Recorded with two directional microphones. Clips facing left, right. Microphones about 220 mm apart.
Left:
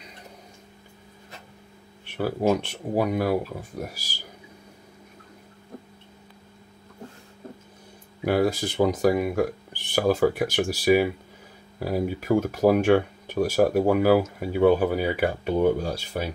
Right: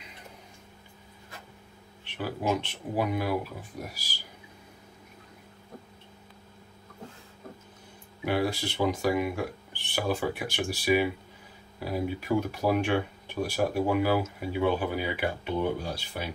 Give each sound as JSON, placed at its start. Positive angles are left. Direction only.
{"t": 2.1, "sound": "speech", "side_deg": 45}
{"t": 8.2, "sound": "speech", "side_deg": 45}